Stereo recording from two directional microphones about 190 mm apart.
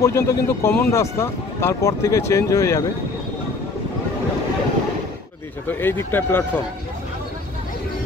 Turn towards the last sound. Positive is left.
turn(degrees=10)  # may be behind; listen again after turning